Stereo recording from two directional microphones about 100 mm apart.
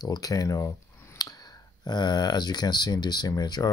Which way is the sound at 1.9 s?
45° left (ahead or behind).